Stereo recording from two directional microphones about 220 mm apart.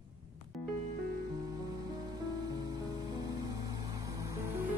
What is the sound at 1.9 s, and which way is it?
Music, 20° right (ahead or behind).